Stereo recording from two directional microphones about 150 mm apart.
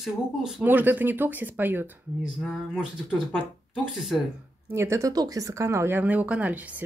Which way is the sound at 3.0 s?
5° left (ahead or behind).